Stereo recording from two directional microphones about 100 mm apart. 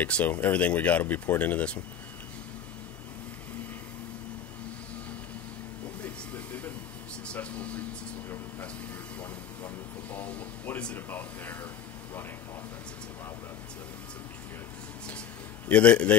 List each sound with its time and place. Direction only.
0.0 s speech: 15° left (ahead or behind)
6.0 s vehicle: 15° left (ahead or behind)
7.2 s a sound: 10° left (ahead or behind)
10.1 s air conditioning: 15° left (ahead or behind)
15.7 s speech: 10° left (ahead or behind)